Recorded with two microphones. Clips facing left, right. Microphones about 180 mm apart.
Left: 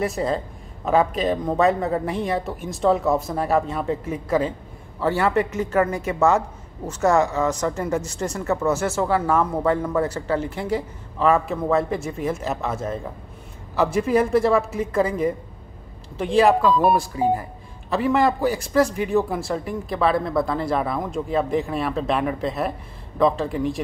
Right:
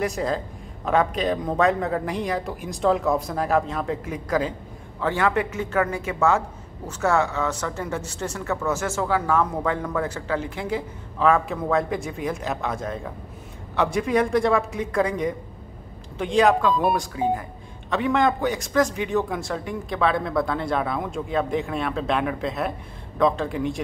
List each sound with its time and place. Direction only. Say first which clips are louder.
0.0 s a man's voice: left 2 dB; centre (ahead or behind)
5.3 s speech: left 3 dB; 40° left (ahead or behind)
7.3 s a man's voice: left 4 dB; 10° left (ahead or behind)